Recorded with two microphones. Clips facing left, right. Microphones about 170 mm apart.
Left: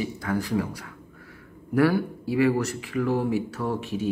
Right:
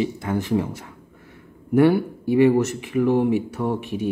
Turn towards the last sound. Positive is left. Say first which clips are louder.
# right 3 dB
turn(degrees=-20)  # may be behind; listen again after turning